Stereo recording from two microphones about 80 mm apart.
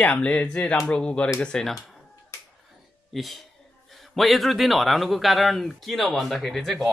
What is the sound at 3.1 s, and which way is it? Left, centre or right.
Speech, centre.